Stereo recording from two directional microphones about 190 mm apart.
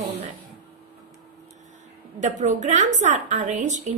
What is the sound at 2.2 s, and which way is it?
A woman's voice, 40° right (ahead or behind).